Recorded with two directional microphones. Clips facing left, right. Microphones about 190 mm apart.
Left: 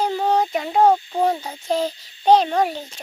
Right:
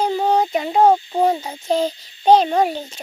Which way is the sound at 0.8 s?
15° right (ahead or behind).